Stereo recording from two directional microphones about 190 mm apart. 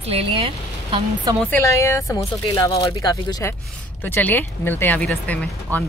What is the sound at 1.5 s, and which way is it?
Speech, 15° left (ahead or behind).